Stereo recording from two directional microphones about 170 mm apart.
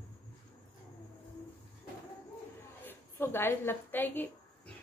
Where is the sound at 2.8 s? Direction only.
10° left (ahead or behind).